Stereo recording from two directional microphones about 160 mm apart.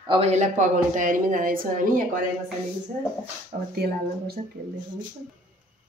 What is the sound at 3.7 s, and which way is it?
Speech, 85° right.